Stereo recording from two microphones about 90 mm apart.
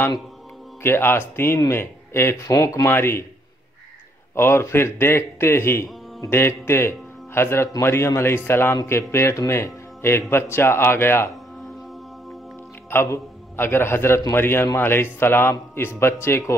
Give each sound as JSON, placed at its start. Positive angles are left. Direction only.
{"t": 0.8, "sound": "speech", "side_deg": 25}
{"t": 4.4, "sound": "speech", "side_deg": 30}
{"t": 12.9, "sound": "a man's voice", "side_deg": 30}